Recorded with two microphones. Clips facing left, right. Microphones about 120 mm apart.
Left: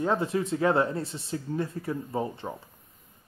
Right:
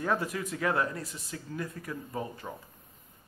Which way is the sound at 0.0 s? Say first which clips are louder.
Left 4 dB; 25° left (ahead or behind).